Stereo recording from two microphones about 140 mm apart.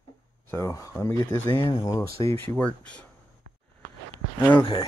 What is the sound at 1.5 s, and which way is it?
Speech, 35° left (ahead or behind).